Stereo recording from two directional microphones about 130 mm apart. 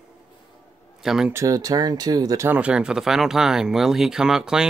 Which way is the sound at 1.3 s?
25° right (ahead or behind).